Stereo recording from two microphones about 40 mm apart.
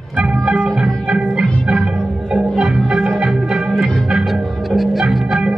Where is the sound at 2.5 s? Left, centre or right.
Centre.